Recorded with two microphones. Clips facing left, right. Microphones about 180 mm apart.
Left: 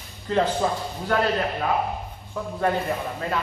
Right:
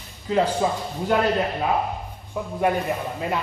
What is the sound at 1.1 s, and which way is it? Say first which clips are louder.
Speech: right 1 dB; 15° right (ahead or behind).